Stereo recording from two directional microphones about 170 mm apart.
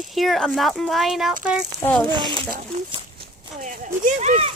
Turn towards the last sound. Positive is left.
turn(degrees=-40)  # may be behind; listen again after turning